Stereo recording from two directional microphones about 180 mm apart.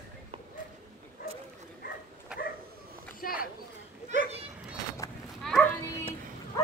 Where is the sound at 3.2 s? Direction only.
50° left (ahead or behind).